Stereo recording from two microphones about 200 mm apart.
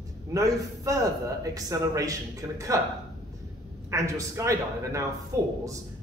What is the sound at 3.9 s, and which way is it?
Speech, 15° right (ahead or behind).